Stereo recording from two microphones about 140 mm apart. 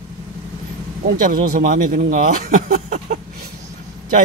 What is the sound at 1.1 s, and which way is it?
Speech, 75° right (ahead or behind).